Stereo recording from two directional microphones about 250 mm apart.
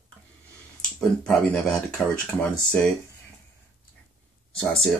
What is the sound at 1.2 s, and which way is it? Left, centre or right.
Speech, centre.